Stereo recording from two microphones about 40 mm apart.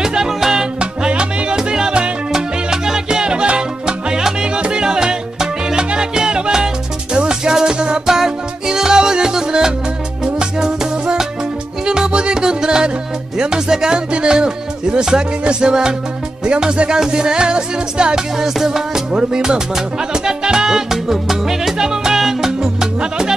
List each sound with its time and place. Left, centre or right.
0.0 s music: centre
0.7 s music: right
18.4 s speech: centre
21.1 s music: centre
22.9 s music: right